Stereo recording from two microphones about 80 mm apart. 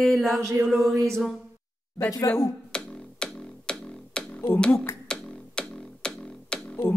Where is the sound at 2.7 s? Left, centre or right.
Centre.